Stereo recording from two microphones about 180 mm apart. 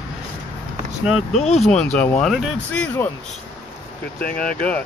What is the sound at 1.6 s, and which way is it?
Speech, 5° left (ahead or behind).